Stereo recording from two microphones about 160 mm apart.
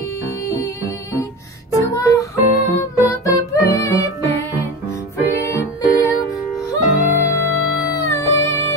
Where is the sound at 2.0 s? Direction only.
20° left (ahead or behind).